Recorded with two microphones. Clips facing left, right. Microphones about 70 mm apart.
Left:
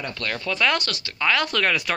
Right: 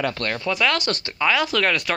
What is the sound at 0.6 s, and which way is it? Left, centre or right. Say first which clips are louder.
Speech: left 1 dB; centre.